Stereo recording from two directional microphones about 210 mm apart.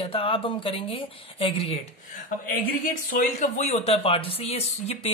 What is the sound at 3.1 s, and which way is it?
Speech, 40° left (ahead or behind).